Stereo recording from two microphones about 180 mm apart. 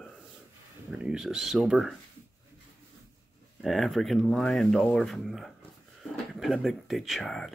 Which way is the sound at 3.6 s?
Centre (ahead or behind).